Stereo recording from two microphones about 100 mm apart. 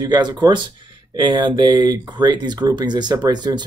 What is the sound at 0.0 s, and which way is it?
Speech, 40° right (ahead or behind).